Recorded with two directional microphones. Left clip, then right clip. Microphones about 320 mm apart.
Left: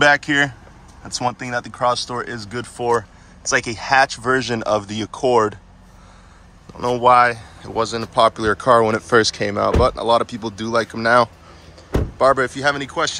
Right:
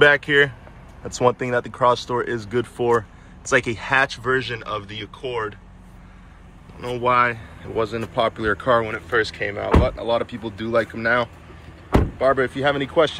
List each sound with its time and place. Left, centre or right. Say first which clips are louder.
0.0 s speech: even; centre
6.8 s speech: left 6 dB; centre